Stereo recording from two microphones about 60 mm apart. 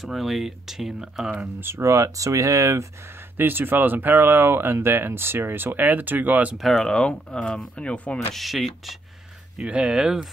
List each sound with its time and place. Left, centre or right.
0.0 s speech: centre
1.6 s speech: right
1.9 s speech: right
3.3 s speech: right
6.8 s speech: centre
8.4 s speech: centre
9.6 s speech: centre